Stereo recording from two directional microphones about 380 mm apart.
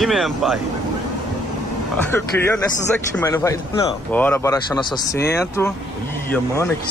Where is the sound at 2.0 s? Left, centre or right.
Centre.